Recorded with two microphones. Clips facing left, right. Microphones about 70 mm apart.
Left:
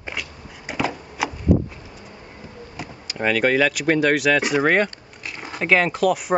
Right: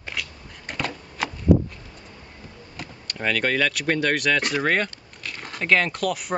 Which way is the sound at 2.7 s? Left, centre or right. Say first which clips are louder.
Left 3 dB; centre.